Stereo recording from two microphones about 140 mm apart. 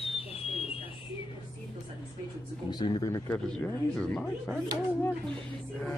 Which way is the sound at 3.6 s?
5° left (ahead or behind).